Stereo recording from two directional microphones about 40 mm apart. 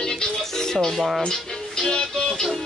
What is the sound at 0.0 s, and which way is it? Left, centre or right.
Music, centre.